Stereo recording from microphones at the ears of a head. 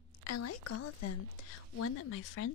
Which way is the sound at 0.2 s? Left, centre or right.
Left.